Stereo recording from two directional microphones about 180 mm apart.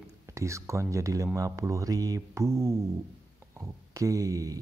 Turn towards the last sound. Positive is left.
turn(degrees=-20)  # may be behind; listen again after turning